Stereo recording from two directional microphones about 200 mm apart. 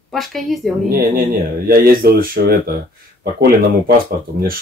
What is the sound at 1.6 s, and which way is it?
Speech, 50° right (ahead or behind).